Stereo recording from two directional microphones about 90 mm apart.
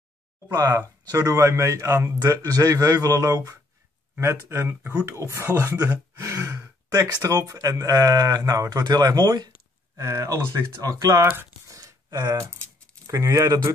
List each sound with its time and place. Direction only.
0.5 s speech: 40° right (ahead or behind)
4.2 s speech: 30° right (ahead or behind)
4.6 s speech: 15° right (ahead or behind)
5.0 s speech: 35° right (ahead or behind)
9.9 s speech: 35° right (ahead or behind)